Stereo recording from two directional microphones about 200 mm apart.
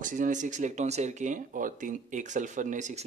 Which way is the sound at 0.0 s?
40° right (ahead or behind).